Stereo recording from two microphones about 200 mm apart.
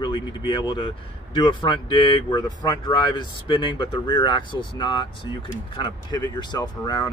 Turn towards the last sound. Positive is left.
turn(degrees=20)  # may be behind; listen again after turning